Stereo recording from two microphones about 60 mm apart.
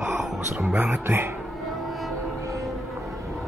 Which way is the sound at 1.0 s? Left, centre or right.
Right.